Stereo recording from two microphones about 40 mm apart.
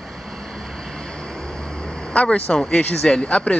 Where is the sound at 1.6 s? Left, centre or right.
Left.